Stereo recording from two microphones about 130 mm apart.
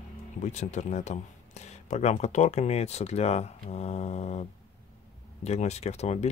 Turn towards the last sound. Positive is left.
turn(degrees=55)  # may be behind; listen again after turning